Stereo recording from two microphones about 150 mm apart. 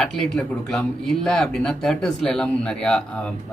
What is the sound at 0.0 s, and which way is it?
Speech, 5° left (ahead or behind).